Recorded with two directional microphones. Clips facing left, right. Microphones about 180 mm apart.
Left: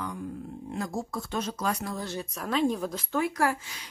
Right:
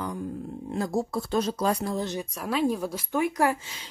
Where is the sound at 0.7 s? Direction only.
35° right (ahead or behind).